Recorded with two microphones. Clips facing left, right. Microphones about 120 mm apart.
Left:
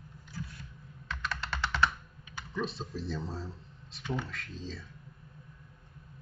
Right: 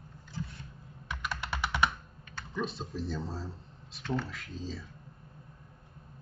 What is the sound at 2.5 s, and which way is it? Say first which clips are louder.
Speech: even; centre (ahead or behind).